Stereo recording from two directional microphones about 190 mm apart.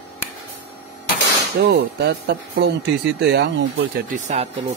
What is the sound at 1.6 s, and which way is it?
Speech, 65° right (ahead or behind).